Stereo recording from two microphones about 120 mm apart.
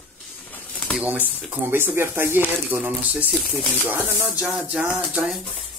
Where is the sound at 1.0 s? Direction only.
15° right (ahead or behind).